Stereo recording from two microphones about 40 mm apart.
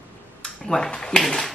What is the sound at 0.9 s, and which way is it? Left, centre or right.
Speech, centre.